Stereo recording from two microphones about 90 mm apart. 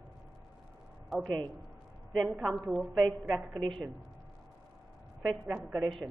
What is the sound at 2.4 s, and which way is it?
A woman's voice, centre (ahead or behind).